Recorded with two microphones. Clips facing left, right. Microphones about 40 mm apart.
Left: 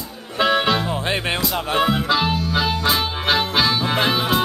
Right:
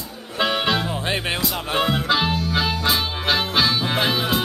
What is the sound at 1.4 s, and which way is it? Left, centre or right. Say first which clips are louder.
Music: left 2 dB; centre.